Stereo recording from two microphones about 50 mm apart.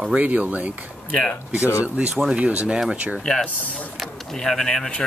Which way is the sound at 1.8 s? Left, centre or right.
Right.